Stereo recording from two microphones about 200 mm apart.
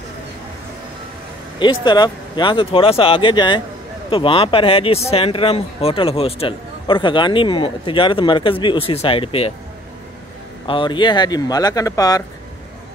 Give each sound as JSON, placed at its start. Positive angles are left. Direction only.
{"t": 1.6, "sound": "speech", "side_deg": 20}
{"t": 10.7, "sound": "speech", "side_deg": 25}